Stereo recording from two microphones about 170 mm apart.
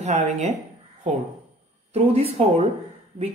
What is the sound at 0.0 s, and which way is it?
Speech, 40° right (ahead or behind).